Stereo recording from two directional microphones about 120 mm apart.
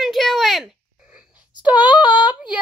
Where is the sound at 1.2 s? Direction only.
10° right (ahead or behind).